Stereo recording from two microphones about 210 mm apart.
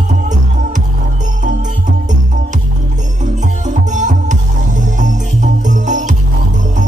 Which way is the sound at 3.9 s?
35° right (ahead or behind).